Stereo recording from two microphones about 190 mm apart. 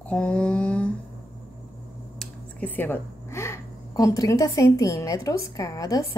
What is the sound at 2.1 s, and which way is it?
A woman's voice, 10° left (ahead or behind).